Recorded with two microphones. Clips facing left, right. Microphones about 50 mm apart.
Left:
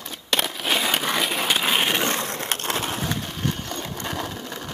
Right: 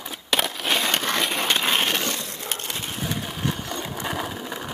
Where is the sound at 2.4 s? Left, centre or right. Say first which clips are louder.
Left 5 dB; left.